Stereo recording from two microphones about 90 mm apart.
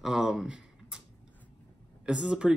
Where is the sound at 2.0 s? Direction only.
10° right (ahead or behind).